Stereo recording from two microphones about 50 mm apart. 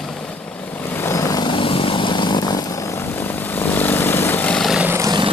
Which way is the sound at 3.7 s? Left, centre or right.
Left.